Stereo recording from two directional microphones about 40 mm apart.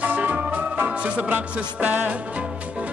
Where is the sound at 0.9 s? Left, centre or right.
Right.